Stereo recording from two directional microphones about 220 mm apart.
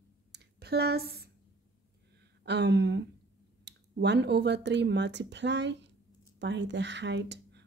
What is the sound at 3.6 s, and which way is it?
Speech, 50° right (ahead or behind).